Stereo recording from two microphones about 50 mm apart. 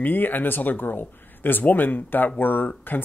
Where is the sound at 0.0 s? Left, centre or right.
Left.